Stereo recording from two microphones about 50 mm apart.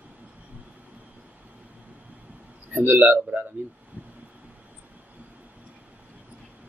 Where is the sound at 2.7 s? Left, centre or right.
Right.